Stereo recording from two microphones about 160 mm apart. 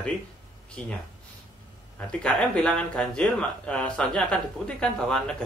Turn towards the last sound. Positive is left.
turn(degrees=5)  # may be behind; listen again after turning